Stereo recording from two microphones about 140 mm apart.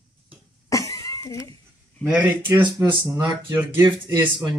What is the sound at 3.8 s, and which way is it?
Speech, 30° right (ahead or behind).